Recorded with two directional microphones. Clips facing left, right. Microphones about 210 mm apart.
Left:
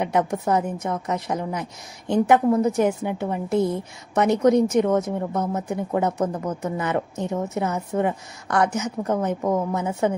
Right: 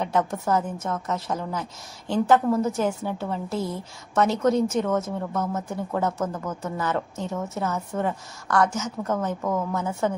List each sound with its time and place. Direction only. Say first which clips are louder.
0.0 s a woman's voice: left 2 dB; 15° left (ahead or behind)